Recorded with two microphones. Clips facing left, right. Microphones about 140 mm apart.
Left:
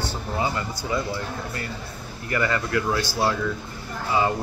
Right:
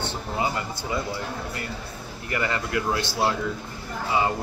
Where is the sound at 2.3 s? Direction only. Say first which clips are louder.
Left 3 dB; 25° right (ahead or behind).